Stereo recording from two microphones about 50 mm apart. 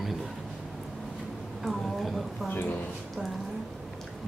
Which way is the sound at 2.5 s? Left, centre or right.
Left.